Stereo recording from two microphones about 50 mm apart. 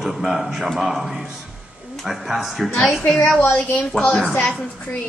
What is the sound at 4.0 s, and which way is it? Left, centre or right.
Speech, left.